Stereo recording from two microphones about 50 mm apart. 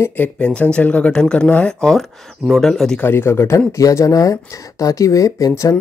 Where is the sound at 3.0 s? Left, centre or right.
Left.